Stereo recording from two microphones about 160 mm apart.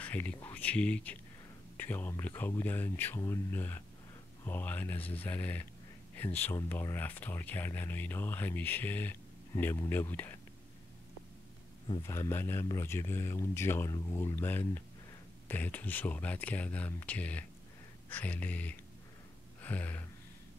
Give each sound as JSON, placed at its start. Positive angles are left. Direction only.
{"t": 0.0, "sound": "speech", "side_deg": 10}
{"t": 12.1, "sound": "speech", "side_deg": 15}
{"t": 19.6, "sound": "gasp", "side_deg": 10}